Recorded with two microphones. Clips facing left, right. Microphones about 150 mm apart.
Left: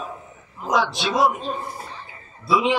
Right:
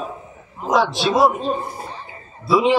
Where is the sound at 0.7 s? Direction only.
Centre (ahead or behind).